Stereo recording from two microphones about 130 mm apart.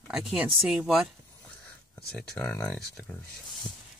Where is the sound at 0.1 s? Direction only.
5° right (ahead or behind).